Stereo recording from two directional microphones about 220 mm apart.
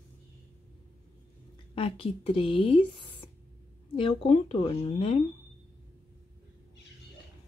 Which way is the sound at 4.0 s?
25° left (ahead or behind).